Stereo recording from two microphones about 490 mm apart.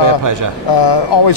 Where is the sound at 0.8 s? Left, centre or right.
Left.